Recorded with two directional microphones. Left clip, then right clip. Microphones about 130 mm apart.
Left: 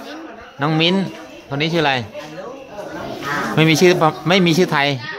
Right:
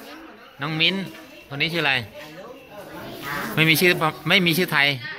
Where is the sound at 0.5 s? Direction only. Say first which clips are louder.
Left 5 dB; 45° left (ahead or behind).